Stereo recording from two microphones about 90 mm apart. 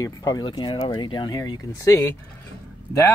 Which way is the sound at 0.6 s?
75° left (ahead or behind).